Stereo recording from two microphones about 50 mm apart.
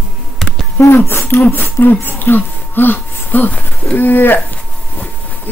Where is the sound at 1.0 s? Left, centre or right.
Left.